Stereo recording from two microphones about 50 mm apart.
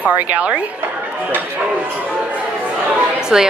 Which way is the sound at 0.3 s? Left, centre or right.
Right.